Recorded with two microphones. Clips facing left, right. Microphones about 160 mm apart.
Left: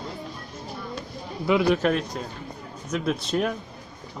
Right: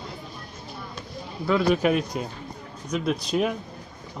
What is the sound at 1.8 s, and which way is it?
A man's voice, 10° right (ahead or behind).